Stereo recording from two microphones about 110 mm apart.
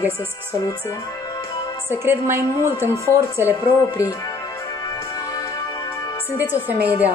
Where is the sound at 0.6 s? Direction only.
30° left (ahead or behind).